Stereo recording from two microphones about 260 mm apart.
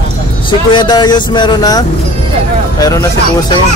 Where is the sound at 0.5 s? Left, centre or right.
Centre.